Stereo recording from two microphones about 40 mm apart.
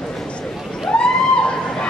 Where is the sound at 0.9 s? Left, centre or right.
Left.